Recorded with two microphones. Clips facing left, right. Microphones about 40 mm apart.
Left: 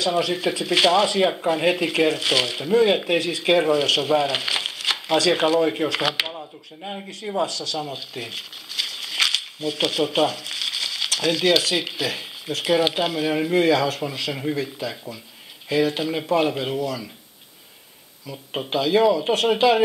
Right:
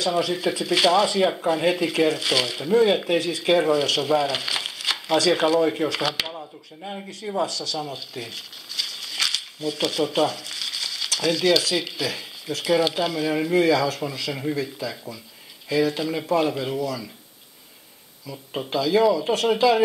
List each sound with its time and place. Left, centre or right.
0.0 s speech: centre
1.0 s speech: left
7.0 s speech: centre
18.2 s speech: centre
18.7 s speech: left